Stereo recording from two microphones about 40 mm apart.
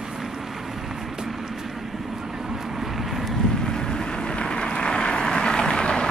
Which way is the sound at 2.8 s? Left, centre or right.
Centre.